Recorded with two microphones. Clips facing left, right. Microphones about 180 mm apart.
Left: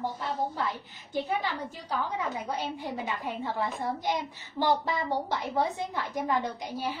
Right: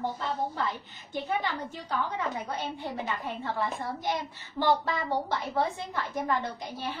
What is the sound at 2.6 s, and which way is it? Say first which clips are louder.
A woman's voice: even; 15° left (ahead or behind).